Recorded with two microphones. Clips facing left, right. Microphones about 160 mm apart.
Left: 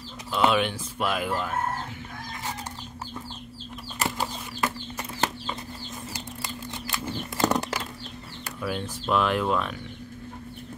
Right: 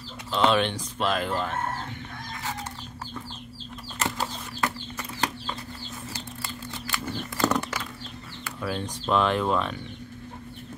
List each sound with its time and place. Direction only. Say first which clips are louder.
0.3 s speech: even; 5° left (ahead or behind)
4.0 s a sound: left 1 dB; 5° left (ahead or behind)
6.1 s bird flight: left 1 dB; 20° left (ahead or behind)
8.5 s speech: even; 5° left (ahead or behind)